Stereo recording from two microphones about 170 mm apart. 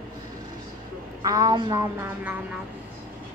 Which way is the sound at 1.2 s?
25° right (ahead or behind).